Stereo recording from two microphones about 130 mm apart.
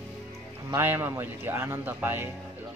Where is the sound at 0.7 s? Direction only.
15° right (ahead or behind).